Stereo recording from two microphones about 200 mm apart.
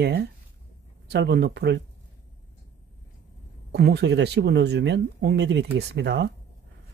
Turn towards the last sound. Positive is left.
turn(degrees=-60)  # may be behind; listen again after turning